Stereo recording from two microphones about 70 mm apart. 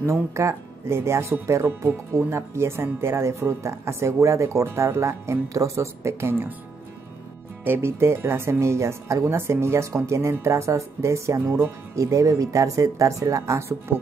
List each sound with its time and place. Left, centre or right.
0.0 s speech: right
7.6 s speech: right